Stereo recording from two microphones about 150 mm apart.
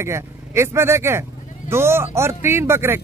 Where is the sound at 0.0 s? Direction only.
20° right (ahead or behind).